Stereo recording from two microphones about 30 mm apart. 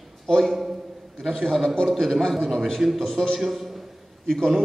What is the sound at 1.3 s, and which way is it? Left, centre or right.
A man's voice, centre.